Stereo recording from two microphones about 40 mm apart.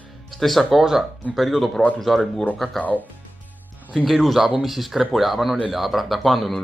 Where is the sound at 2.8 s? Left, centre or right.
Left.